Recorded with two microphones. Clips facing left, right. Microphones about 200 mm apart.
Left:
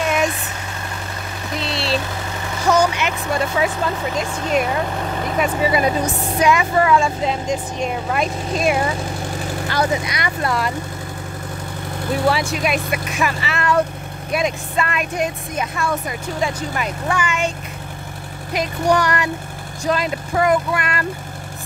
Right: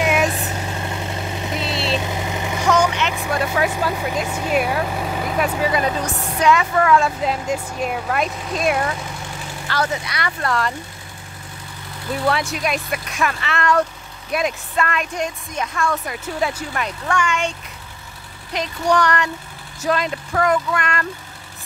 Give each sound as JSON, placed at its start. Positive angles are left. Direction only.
{"t": 0.0, "sound": "vehicle", "side_deg": -10}
{"t": 0.8, "sound": "vehicle", "side_deg": -25}
{"t": 1.6, "sound": "vehicle", "side_deg": 0}
{"t": 2.0, "sound": "vehicle", "side_deg": -15}
{"t": 2.7, "sound": "vehicle", "side_deg": 10}
{"t": 3.2, "sound": "speech", "side_deg": -5}
{"t": 9.7, "sound": "speech", "side_deg": 15}
{"t": 12.3, "sound": "speech", "side_deg": 5}
{"t": 18.5, "sound": "speech", "side_deg": 10}